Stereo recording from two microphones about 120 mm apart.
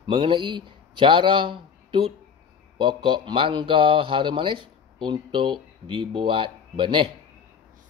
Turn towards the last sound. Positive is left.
turn(degrees=-45)  # may be behind; listen again after turning